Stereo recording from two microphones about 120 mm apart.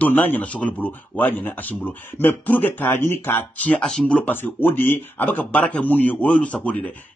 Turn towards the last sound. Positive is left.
turn(degrees=10)  # may be behind; listen again after turning